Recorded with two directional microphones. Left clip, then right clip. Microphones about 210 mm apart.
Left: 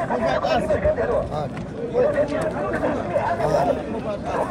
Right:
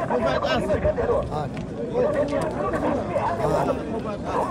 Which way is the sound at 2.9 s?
45° right (ahead or behind).